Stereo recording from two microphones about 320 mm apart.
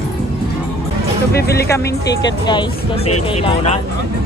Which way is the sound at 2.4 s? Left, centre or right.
Centre.